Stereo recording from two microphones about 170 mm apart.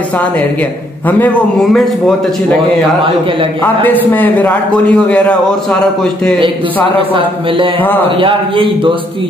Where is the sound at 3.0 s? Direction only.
30° right (ahead or behind).